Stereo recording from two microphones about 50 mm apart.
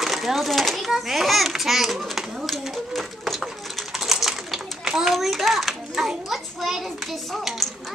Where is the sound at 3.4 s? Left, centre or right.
Centre.